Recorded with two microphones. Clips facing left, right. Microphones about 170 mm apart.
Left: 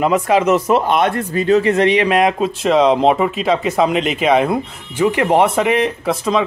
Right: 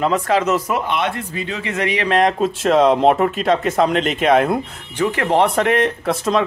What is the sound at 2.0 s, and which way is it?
Speech, 10° left (ahead or behind).